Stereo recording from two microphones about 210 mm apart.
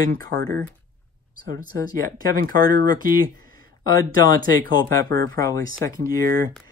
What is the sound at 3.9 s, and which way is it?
Speech, 40° right (ahead or behind).